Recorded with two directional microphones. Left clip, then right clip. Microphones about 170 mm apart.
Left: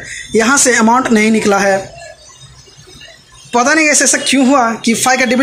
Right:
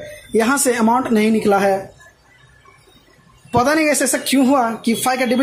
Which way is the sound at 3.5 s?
10° right (ahead or behind).